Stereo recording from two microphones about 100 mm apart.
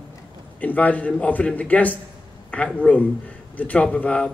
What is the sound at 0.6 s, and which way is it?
A man's voice, 15° left (ahead or behind).